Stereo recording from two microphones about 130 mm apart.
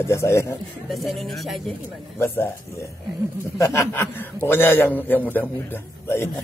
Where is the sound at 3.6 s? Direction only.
20° left (ahead or behind).